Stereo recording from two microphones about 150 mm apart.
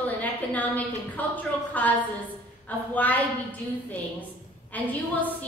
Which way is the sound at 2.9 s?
10° left (ahead or behind).